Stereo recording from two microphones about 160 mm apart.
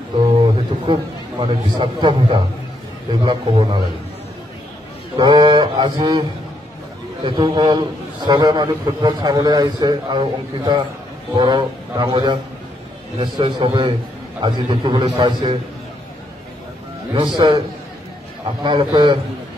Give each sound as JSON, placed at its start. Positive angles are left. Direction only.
{"t": 1.4, "sound": "a man's voice", "side_deg": -30}
{"t": 5.1, "sound": "a man's voice", "side_deg": -25}
{"t": 7.2, "sound": "a man's voice", "side_deg": -30}
{"t": 17.1, "sound": "a man's voice", "side_deg": -30}
{"t": 18.6, "sound": "a man's voice", "side_deg": -30}